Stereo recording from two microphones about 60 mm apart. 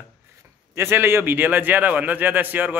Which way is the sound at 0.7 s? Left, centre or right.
Right.